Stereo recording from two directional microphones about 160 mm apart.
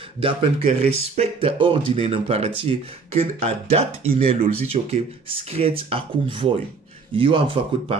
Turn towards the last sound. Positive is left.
turn(degrees=-35)  # may be behind; listen again after turning